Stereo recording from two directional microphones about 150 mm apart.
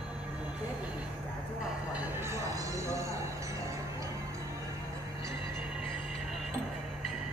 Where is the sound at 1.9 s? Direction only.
10° right (ahead or behind).